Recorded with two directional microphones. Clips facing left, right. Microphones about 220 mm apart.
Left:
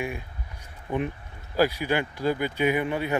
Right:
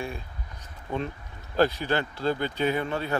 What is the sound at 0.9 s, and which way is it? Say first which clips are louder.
Speech: left 3 dB; 15° left (ahead or behind).